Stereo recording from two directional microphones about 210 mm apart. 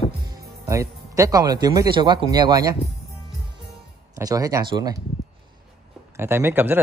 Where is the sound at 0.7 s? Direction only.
15° right (ahead or behind).